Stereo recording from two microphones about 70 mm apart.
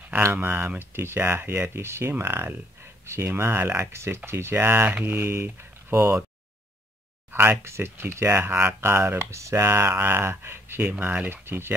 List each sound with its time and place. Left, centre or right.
0.3 s speech: right
7.2 s speech: right
10.8 s speech: right
11.4 s speech: right